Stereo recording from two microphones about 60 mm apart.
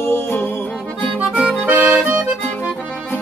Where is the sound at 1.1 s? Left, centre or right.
Right.